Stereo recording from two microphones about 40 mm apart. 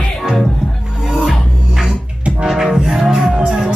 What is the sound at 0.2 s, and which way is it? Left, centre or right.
Music, centre.